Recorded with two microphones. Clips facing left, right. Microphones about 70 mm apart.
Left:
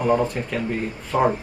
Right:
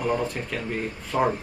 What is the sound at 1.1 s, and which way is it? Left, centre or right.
Speech, centre.